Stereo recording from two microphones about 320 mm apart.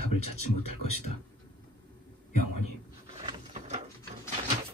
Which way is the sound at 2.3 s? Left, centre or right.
Left.